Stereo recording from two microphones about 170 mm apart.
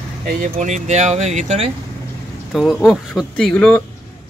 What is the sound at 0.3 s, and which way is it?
Speech, 50° right (ahead or behind).